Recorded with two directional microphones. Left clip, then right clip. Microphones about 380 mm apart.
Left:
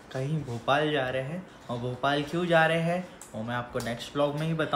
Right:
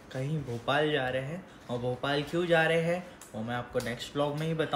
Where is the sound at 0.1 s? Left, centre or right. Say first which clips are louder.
Left 2 dB; centre.